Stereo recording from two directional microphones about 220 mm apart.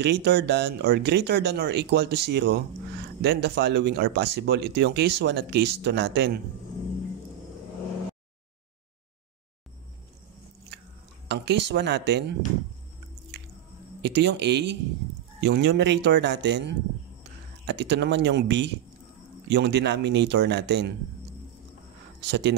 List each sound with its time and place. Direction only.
0.0 s speech: 50° right (ahead or behind)
11.2 s speech: 50° right (ahead or behind)
14.0 s speech: 50° right (ahead or behind)
22.3 s speech: 50° right (ahead or behind)